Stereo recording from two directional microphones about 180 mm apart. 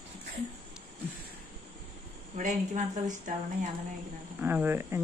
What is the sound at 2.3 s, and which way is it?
A woman's voice, 40° right (ahead or behind).